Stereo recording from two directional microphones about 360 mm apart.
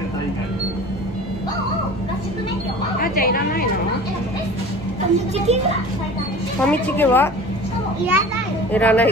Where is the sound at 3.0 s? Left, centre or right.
Left.